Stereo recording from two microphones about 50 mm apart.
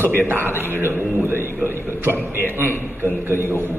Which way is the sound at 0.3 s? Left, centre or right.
Right.